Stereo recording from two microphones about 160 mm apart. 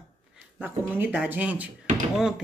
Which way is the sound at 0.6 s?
10° right (ahead or behind).